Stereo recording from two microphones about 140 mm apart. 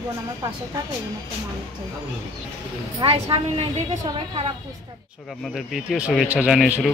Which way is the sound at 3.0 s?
40° right (ahead or behind).